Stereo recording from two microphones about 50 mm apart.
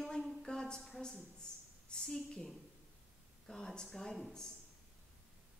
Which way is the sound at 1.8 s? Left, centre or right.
Centre.